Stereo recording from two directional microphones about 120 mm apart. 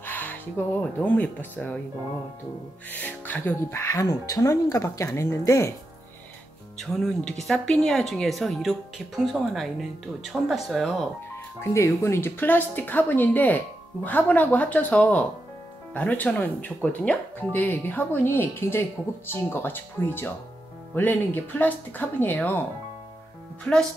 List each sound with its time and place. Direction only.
0.0 s speech: 15° left (ahead or behind)
2.9 s speech: 15° left (ahead or behind)
6.8 s speech: 5° left (ahead or behind)
11.7 s speech: 25° left (ahead or behind)